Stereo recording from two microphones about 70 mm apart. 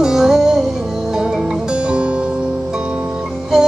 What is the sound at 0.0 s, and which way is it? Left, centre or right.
Music, centre.